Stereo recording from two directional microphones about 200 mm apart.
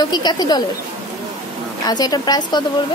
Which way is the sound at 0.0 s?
20° left (ahead or behind).